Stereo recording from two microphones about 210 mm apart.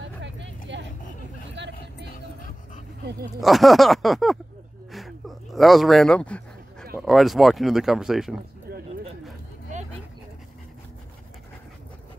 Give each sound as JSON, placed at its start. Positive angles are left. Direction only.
{"t": 0.2, "sound": "vehicle", "side_deg": -60}
{"t": 2.0, "sound": "dog", "side_deg": 40}
{"t": 3.3, "sound": "speech", "side_deg": 0}
{"t": 4.9, "sound": "a sound", "side_deg": 0}
{"t": 7.0, "sound": "speech", "side_deg": 0}